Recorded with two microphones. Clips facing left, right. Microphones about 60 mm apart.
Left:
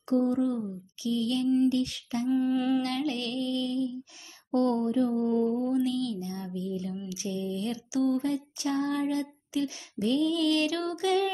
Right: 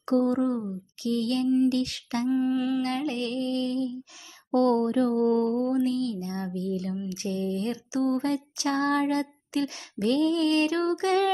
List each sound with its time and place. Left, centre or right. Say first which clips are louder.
0.0 s speech: right 2 dB; right
1.0 s child singing: right 2 dB; right
1.7 s female singing: right 1 dB; right
2.2 s lullaby: right 1 dB; centre
2.5 s music: even; centre
3.0 s music: right 2 dB; right
4.6 s child singing: right 3 dB; right
5.7 s speech: right 2 dB; right
7.1 s child singing: right 3 dB; right
8.0 s speech: right 1 dB; right
8.3 s child singing: right 2 dB; right